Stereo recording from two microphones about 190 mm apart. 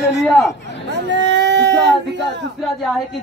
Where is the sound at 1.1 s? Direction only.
70° right (ahead or behind).